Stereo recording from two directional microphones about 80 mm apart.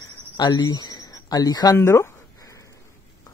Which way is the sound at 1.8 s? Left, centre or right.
Left.